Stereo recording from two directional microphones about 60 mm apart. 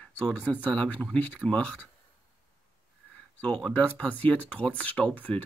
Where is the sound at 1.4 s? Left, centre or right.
Centre.